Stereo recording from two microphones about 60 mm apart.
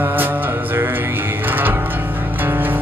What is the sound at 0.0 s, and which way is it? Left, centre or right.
Music, right.